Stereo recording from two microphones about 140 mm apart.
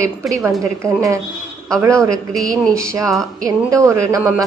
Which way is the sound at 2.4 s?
25° right (ahead or behind).